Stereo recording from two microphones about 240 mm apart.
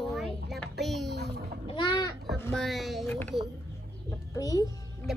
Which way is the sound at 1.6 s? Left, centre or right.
Centre.